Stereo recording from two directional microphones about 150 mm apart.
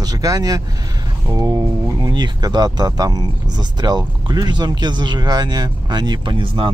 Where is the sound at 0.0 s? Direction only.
25° right (ahead or behind).